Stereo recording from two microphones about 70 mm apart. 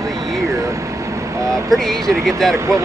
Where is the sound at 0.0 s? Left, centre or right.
Right.